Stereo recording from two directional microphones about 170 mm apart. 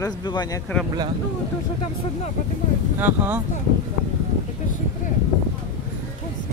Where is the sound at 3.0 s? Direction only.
10° right (ahead or behind).